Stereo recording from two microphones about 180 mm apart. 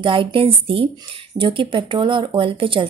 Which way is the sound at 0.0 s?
30° right (ahead or behind).